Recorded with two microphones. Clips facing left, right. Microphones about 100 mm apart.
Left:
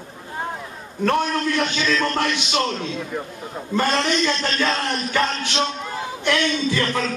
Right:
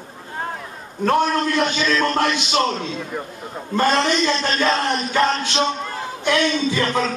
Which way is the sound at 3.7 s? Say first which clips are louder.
Right 3 dB; 15° right (ahead or behind).